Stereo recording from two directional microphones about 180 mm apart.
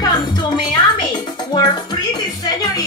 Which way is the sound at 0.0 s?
25° left (ahead or behind).